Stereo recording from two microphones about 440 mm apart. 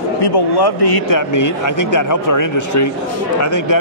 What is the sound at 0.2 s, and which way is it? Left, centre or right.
A man's voice, left.